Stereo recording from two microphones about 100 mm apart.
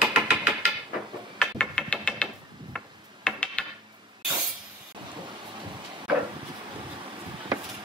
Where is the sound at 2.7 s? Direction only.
5° left (ahead or behind).